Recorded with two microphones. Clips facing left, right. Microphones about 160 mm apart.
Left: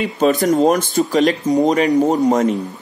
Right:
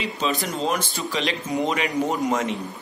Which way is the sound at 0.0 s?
45° left (ahead or behind).